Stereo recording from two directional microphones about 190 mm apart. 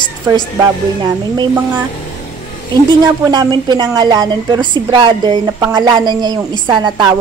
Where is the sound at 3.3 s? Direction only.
25° right (ahead or behind).